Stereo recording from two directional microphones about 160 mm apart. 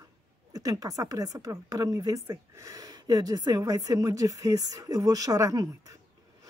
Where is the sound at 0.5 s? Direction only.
20° right (ahead or behind).